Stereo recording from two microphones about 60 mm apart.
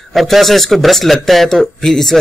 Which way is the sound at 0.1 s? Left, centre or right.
Centre.